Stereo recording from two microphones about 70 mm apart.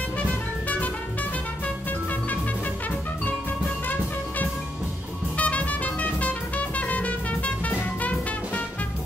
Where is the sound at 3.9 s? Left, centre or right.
Left.